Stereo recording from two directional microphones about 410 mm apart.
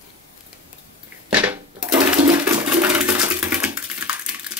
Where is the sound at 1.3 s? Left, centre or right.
Centre.